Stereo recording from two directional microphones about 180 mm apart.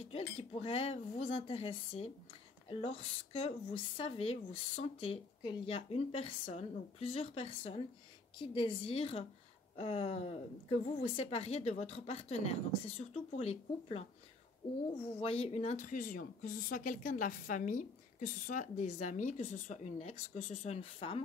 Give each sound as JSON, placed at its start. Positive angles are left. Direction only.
{"t": 0.0, "sound": "speech", "side_deg": 35}
{"t": 15.1, "sound": "speech", "side_deg": 35}